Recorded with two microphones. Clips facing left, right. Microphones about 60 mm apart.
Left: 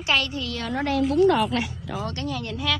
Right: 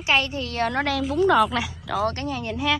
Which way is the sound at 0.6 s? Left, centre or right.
Right.